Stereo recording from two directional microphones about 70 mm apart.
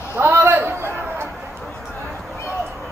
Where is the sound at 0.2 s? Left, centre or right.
Right.